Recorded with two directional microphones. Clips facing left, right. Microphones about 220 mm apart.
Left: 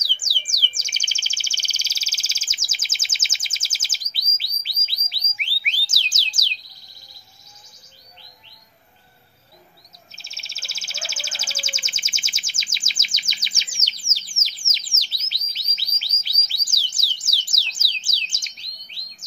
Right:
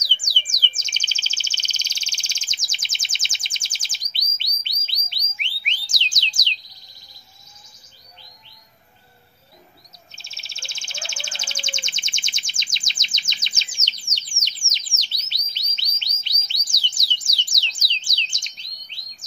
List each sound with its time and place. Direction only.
0.2 s bird: 5° left (ahead or behind)
5.6 s a sound: 5° left (ahead or behind)
10.1 s bird: centre (ahead or behind)
14.3 s bird: 70° left (ahead or behind)
14.7 s bird: centre (ahead or behind)